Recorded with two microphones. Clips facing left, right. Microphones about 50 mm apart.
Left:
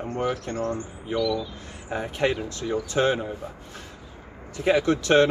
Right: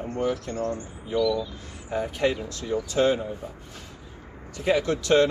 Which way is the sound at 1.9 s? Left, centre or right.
Left.